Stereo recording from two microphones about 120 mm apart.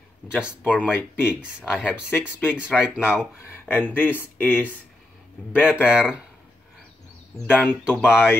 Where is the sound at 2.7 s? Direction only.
5° left (ahead or behind).